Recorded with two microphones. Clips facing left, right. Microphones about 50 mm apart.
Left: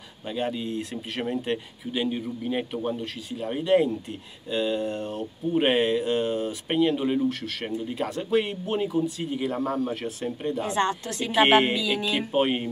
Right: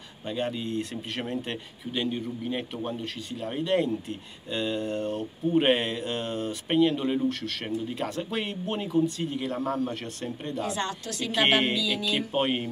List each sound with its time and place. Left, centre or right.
0.3 s speech: centre
10.6 s speech: left
11.3 s a woman's voice: centre
11.7 s speech: left
12.0 s speech: centre